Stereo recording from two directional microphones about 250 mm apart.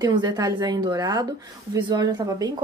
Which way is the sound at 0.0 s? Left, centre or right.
Centre.